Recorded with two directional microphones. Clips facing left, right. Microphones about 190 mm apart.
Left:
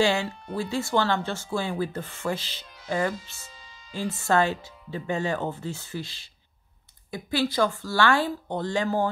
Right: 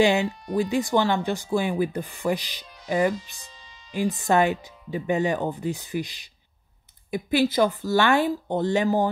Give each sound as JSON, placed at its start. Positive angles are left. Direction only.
{"t": 0.0, "sound": "speech", "side_deg": -20}